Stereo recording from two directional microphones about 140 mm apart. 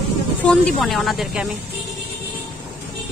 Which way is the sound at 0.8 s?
Centre (ahead or behind).